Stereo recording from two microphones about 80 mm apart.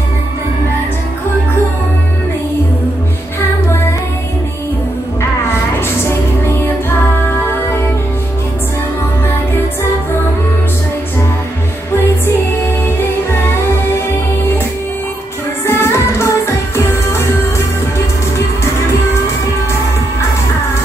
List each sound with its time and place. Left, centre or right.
7.1 s music: left
15.6 s music: left